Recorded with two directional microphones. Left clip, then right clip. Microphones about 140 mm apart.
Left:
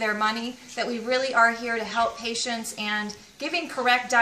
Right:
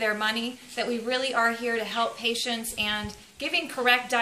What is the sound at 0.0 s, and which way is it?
A woman's voice, 5° right (ahead or behind).